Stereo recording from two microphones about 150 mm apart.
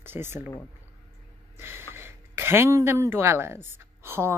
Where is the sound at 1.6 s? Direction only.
15° right (ahead or behind).